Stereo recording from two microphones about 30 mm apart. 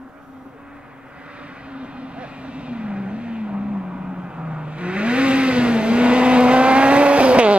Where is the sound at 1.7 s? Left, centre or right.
Right.